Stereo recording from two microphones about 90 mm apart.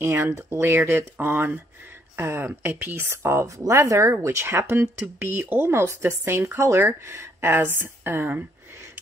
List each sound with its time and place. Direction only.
0.0 s speech: 30° right (ahead or behind)